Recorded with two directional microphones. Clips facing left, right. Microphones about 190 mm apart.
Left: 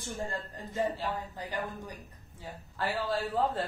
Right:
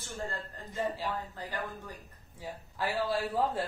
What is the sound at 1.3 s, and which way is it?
Speech, 15° left (ahead or behind).